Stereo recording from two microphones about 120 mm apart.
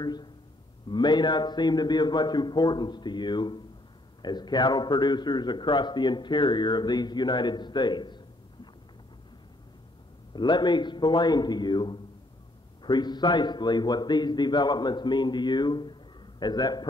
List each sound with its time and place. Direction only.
0.0 s a man's voice: 35° left (ahead or behind)
10.3 s a man's voice: 40° left (ahead or behind)